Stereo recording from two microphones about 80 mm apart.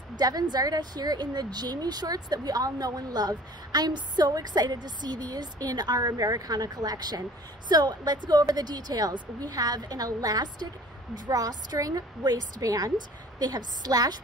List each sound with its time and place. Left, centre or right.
0.2 s a woman's voice: right